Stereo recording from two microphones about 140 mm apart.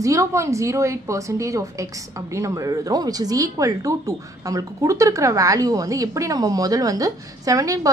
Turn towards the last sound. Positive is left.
turn(degrees=-25)  # may be behind; listen again after turning